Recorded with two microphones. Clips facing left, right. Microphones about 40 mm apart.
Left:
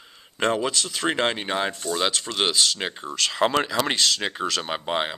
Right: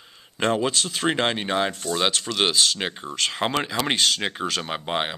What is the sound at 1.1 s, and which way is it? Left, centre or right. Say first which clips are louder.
Speech: even; centre.